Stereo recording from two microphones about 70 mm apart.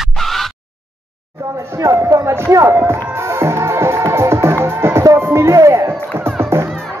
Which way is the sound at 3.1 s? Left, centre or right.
Right.